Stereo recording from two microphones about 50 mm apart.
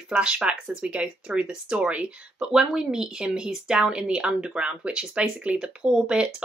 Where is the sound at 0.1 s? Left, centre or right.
Centre.